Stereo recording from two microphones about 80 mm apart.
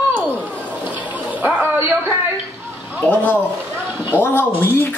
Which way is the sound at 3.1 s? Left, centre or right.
Centre.